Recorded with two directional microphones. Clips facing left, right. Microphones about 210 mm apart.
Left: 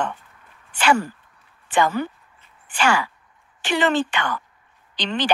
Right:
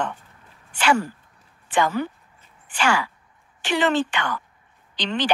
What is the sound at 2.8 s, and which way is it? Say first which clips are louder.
A woman's voice: left 2 dB; 55° left (ahead or behind).